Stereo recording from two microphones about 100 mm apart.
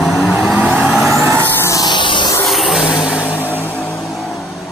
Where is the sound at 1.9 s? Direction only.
50° left (ahead or behind).